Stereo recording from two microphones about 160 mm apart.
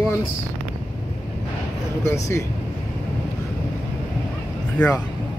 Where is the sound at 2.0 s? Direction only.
20° left (ahead or behind).